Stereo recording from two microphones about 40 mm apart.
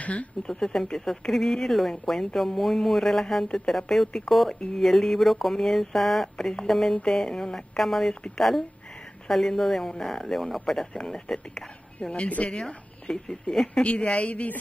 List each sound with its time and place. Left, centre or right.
0.0 s speech: left
0.7 s a woman's voice: centre
7.8 s a woman's voice: centre
14.2 s speech: left